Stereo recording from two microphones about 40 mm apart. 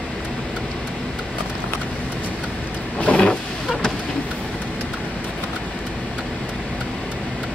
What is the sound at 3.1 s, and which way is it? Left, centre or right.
Vehicle, centre.